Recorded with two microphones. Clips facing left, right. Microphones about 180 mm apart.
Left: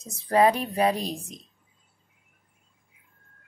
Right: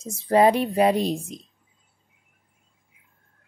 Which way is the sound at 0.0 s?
30° right (ahead or behind).